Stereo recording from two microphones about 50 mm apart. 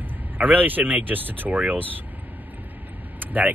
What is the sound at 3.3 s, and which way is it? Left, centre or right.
Speech, right.